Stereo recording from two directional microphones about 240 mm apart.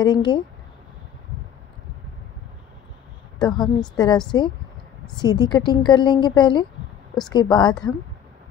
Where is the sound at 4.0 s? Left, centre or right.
Centre.